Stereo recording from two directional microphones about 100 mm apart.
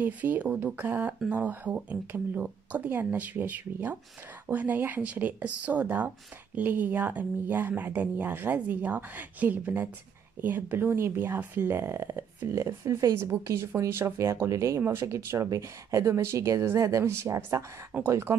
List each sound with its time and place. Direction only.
0.0 s speech: 15° right (ahead or behind)